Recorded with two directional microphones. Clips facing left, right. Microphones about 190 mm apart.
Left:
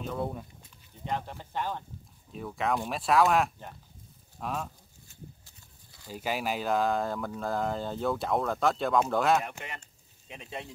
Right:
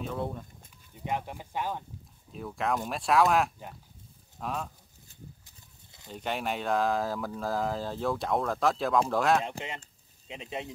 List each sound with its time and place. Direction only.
0.0 s speech: centre (ahead or behind)
0.9 s speech: 10° right (ahead or behind)
6.0 s speech: 5° left (ahead or behind)
9.4 s speech: 25° right (ahead or behind)